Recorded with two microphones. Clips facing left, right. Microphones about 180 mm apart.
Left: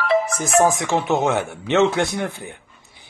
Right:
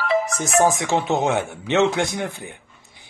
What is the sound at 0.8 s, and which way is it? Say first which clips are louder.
A man's voice: left 1 dB; 20° right (ahead or behind).